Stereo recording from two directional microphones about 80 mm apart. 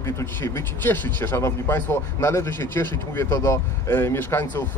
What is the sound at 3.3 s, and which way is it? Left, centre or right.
Speech, left.